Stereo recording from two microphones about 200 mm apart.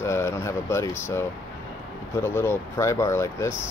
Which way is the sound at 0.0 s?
10° left (ahead or behind).